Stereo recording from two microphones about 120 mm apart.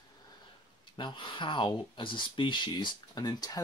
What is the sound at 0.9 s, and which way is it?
Speech, 40° left (ahead or behind).